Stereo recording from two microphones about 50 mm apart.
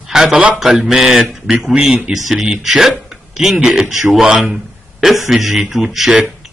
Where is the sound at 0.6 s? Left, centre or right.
Centre.